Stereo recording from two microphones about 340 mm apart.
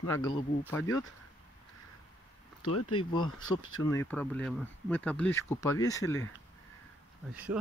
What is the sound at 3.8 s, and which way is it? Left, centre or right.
Speech, centre.